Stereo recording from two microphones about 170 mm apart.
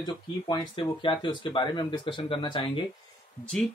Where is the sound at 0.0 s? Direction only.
30° left (ahead or behind).